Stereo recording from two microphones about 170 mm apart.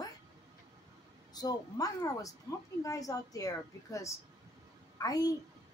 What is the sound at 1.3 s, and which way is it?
A woman's voice, 20° left (ahead or behind).